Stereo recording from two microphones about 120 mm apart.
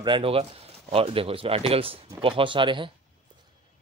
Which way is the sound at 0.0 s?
45° right (ahead or behind).